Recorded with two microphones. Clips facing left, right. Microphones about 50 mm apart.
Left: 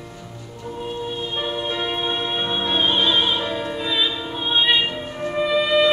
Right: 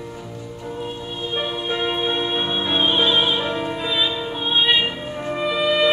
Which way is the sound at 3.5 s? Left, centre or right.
Centre.